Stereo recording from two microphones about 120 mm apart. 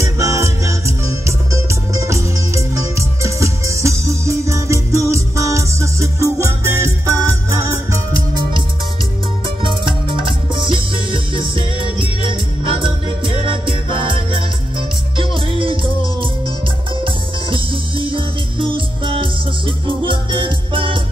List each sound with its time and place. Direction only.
0.0 s music: 25° right (ahead or behind)
9.6 s music: 45° right (ahead or behind)